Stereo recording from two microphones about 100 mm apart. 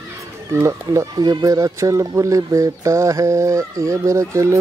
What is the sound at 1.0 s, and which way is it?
Speech, 45° right (ahead or behind).